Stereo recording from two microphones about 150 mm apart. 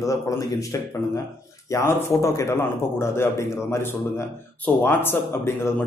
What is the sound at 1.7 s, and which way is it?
Speech, 20° left (ahead or behind).